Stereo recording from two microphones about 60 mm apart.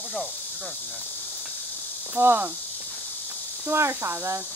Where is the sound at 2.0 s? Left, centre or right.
Right.